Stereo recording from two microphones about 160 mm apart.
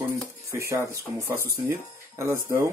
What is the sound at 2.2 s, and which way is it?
Speech, 15° right (ahead or behind).